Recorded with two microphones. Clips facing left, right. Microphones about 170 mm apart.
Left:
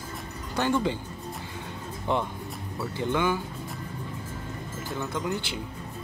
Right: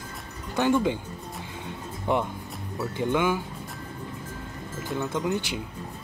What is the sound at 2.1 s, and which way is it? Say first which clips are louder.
Speech: right 2 dB; 15° right (ahead or behind).